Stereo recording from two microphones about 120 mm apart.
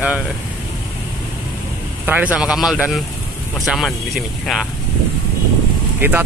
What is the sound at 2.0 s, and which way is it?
Speech, 15° right (ahead or behind).